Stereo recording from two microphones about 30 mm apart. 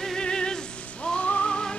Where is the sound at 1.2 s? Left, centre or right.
Left.